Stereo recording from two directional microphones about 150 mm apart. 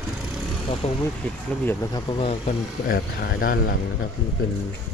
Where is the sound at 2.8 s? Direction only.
75° left (ahead or behind).